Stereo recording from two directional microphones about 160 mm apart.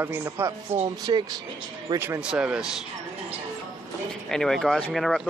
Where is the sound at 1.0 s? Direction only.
25° right (ahead or behind).